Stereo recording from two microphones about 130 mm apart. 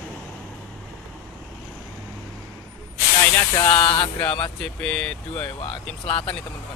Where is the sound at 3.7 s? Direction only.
40° left (ahead or behind).